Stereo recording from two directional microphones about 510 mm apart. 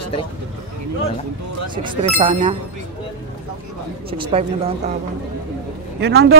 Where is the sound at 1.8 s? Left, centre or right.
Centre.